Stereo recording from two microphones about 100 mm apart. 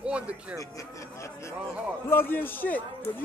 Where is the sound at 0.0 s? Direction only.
10° right (ahead or behind).